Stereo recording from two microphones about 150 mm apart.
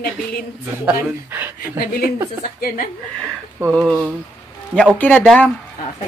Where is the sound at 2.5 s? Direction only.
75° left (ahead or behind).